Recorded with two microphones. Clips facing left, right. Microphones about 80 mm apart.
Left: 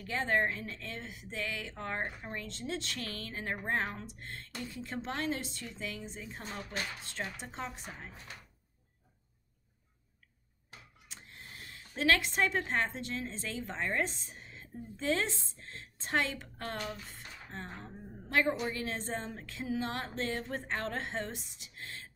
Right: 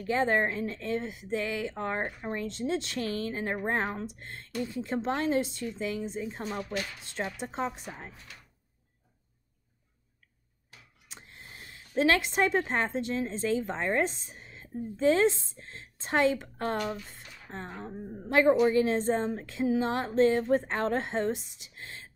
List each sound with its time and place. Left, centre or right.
0.0 s a woman's voice: right
7.4 s a woman's voice: right
11.1 s a woman's voice: centre
16.7 s speech: right
17.5 s a woman's voice: centre